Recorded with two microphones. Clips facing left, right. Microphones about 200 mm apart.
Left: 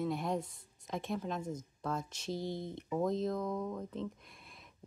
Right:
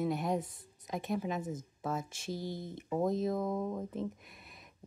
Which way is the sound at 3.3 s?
20° right (ahead or behind).